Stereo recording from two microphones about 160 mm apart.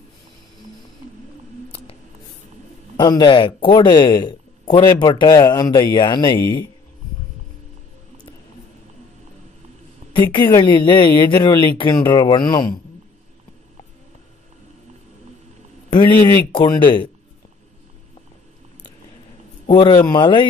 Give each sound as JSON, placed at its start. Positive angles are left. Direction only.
{"t": 3.0, "sound": "speech", "side_deg": 25}
{"t": 10.1, "sound": "a woman's voice", "side_deg": 30}
{"t": 15.9, "sound": "speech", "side_deg": 30}
{"t": 19.7, "sound": "speech", "side_deg": 30}